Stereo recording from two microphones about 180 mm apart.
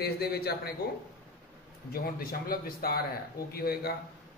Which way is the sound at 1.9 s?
55° left (ahead or behind).